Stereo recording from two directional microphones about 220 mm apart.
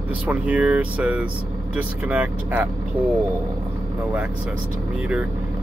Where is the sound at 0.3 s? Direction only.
5° right (ahead or behind).